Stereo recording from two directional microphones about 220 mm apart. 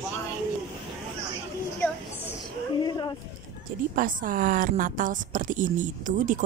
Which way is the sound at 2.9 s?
20° left (ahead or behind).